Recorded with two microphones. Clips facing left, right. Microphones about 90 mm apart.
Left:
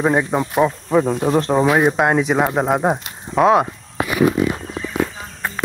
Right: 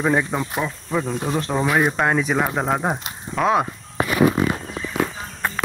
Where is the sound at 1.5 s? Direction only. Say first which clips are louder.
Left 3 dB; 20° left (ahead or behind).